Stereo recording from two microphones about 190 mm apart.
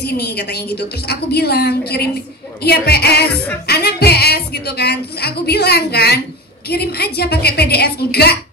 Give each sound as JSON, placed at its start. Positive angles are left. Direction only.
{"t": 0.0, "sound": "a woman's voice", "side_deg": 60}